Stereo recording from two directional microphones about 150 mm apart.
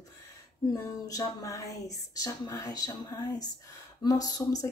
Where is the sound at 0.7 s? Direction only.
25° left (ahead or behind).